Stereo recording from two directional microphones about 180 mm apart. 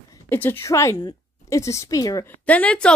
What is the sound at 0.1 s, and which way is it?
A woman's voice, 10° left (ahead or behind).